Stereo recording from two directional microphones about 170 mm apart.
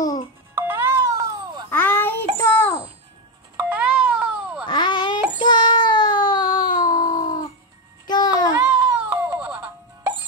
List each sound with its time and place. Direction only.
0.6 s music: 15° right (ahead or behind)
1.7 s child singing: 10° left (ahead or behind)
3.5 s music: 10° right (ahead or behind)
4.6 s a sound: 25° left (ahead or behind)
5.4 s child singing: 25° left (ahead or behind)
8.1 s a sound: 25° left (ahead or behind)
8.6 s music: 10° right (ahead or behind)